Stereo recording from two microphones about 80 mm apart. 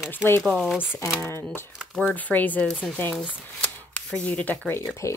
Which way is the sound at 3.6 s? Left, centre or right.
Centre.